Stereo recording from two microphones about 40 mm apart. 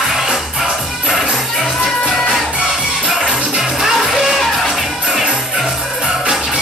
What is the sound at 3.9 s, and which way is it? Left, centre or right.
Music, centre.